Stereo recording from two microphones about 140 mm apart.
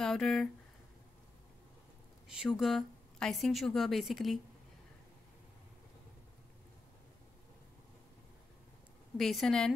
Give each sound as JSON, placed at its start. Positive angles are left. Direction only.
{"t": 0.0, "sound": "speech", "side_deg": 5}
{"t": 2.3, "sound": "a woman's voice", "side_deg": -5}
{"t": 9.2, "sound": "a woman's voice", "side_deg": 0}